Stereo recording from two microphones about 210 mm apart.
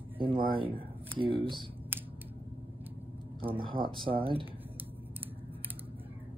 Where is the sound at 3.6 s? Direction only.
25° right (ahead or behind).